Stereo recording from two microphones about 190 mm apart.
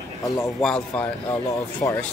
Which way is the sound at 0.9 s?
15° left (ahead or behind).